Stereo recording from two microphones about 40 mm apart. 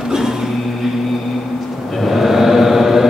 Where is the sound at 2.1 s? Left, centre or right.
Centre.